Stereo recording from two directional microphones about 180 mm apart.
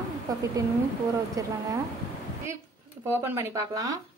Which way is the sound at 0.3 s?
20° right (ahead or behind).